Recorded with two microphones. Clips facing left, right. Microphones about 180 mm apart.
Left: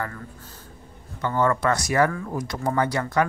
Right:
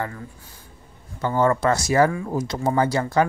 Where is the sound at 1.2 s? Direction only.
30° right (ahead or behind).